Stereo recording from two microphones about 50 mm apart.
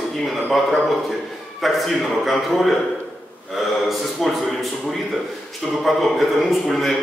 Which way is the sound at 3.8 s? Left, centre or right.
Centre.